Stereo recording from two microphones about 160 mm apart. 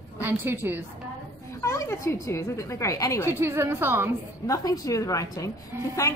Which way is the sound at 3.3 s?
15° right (ahead or behind).